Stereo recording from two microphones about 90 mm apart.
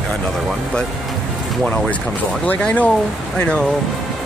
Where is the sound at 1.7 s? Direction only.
10° left (ahead or behind).